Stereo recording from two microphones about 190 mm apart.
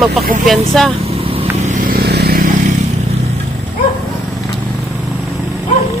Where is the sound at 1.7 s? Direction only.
50° right (ahead or behind).